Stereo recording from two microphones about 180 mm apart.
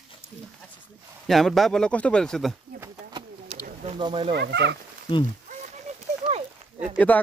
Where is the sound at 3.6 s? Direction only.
35° right (ahead or behind).